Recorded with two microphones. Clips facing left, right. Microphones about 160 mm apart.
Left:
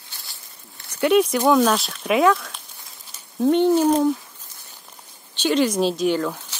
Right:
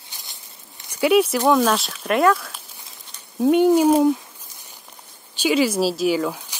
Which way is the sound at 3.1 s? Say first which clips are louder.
Right 1 dB; 5° right (ahead or behind).